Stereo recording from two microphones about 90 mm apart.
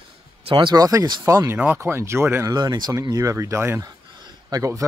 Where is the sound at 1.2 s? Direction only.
30° right (ahead or behind).